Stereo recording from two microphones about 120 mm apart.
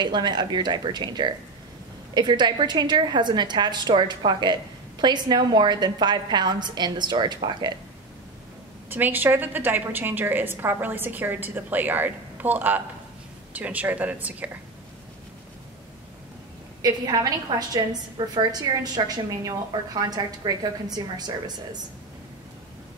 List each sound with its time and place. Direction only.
0.0 s a woman's voice: 35° right (ahead or behind)
8.9 s a woman's voice: 15° right (ahead or behind)
16.8 s a woman's voice: 35° right (ahead or behind)